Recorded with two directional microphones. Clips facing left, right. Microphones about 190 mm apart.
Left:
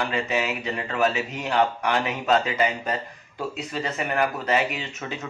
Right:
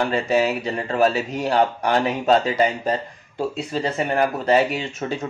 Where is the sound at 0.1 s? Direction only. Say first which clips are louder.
Right 6 dB; 35° right (ahead or behind).